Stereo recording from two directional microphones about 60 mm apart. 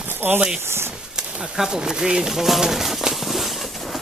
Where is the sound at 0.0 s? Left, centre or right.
Right.